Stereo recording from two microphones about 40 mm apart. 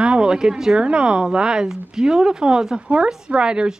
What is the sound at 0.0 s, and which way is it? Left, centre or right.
A woman's voice, right.